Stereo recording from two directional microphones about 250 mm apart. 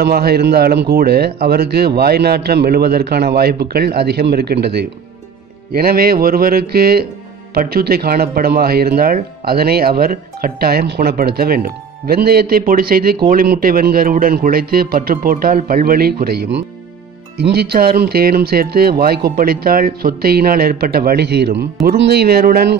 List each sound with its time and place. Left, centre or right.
0.0 s speech: right